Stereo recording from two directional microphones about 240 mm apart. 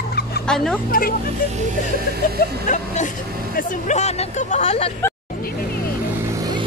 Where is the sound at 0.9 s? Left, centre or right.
Left.